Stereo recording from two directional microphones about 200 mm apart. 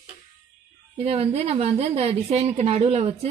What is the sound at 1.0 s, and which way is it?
A woman's voice, 30° right (ahead or behind).